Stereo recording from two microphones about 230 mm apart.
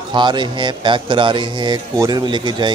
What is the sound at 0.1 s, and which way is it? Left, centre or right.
Speech, centre.